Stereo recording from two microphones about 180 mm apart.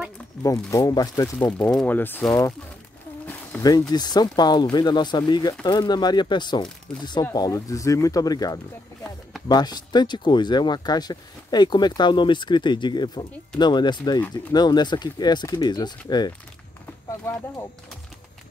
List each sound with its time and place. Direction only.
0.4 s speech: 15° left (ahead or behind)
1.6 s speech: 5° left (ahead or behind)
3.5 s speech: 10° left (ahead or behind)
3.9 s speech: 20° left (ahead or behind)